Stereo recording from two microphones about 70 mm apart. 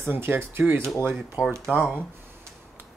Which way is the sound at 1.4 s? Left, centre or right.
Centre.